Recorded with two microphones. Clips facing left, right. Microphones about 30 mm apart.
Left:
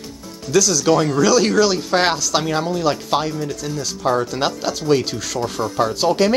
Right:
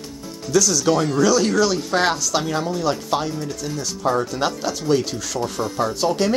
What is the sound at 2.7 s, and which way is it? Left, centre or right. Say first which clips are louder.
Speech: left 3 dB; left.